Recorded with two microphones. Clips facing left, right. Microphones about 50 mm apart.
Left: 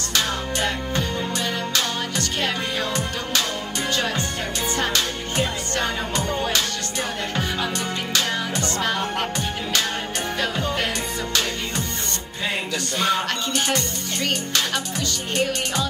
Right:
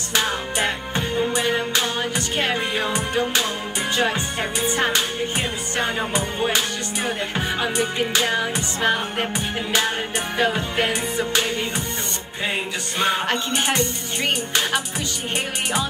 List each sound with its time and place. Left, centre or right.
0.1 s music: right
4.6 s music: centre
10.4 s music: right
13.0 s music: right